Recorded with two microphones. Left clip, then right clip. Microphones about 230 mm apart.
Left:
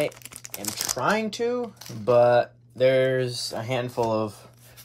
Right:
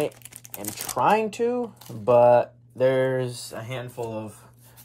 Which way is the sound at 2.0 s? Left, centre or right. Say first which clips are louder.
Right 2 dB; centre.